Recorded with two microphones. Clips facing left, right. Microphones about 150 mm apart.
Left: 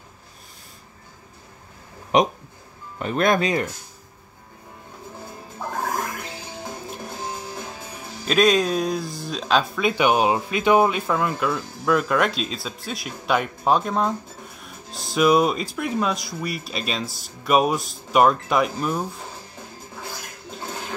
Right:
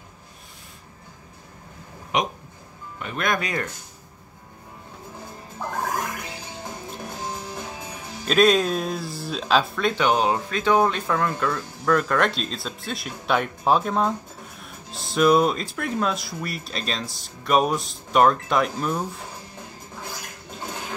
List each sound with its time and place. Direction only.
2.1 s speech: 35° left (ahead or behind)
8.3 s speech: centre (ahead or behind)
9.8 s speech: 15° left (ahead or behind)